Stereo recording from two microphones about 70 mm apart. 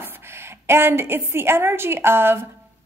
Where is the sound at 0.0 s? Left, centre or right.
Right.